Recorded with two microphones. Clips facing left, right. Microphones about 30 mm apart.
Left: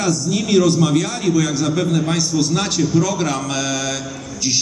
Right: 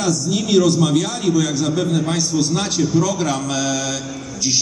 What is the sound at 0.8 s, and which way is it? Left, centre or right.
A man's voice, centre.